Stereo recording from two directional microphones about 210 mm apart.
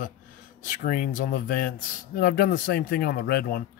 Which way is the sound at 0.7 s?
40° left (ahead or behind).